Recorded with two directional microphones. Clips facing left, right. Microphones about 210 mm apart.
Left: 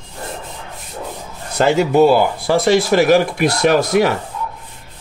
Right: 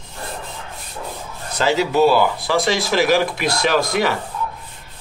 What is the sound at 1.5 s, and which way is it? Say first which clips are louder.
Speech: left 4 dB; 50° left (ahead or behind).